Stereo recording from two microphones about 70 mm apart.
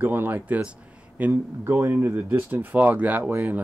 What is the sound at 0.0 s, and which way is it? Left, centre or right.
Speech, right.